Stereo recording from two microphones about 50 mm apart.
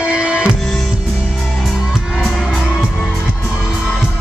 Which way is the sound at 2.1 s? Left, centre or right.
Centre.